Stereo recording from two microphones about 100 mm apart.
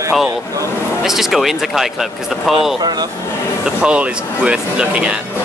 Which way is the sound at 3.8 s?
10° right (ahead or behind).